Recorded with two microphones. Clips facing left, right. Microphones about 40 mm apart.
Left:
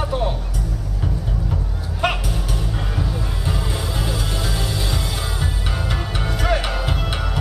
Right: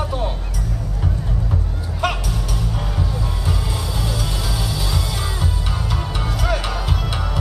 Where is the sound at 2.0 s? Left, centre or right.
Left.